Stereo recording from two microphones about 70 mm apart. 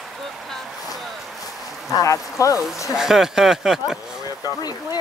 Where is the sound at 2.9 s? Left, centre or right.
Centre.